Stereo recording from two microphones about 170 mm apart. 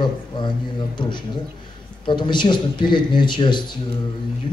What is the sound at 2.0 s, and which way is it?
A man's voice, 25° left (ahead or behind).